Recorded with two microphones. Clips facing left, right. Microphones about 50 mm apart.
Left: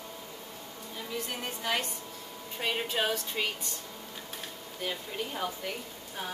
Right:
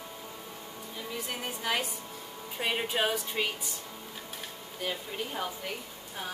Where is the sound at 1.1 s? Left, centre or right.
Centre.